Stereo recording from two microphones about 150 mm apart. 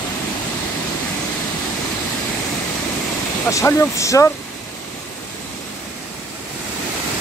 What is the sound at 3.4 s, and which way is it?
Speech, 20° left (ahead or behind).